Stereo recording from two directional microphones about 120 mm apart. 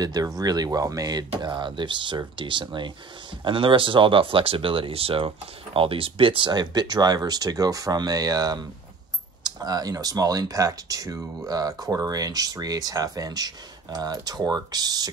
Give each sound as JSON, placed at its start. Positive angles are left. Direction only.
{"t": 0.0, "sound": "speech", "side_deg": -30}